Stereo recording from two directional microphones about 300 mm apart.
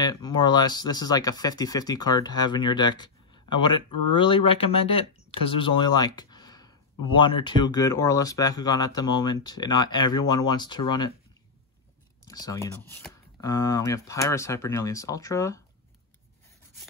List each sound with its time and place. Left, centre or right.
0.0 s speech: centre
5.9 s a sound: centre
7.1 s speech: centre
12.3 s speech: centre